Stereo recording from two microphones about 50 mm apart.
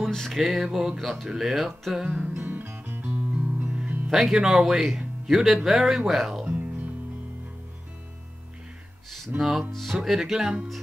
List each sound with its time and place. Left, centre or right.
0.0 s music: centre
0.3 s speech: centre
2.1 s music: right
4.1 s speech: centre
6.4 s music: right
9.4 s speech: centre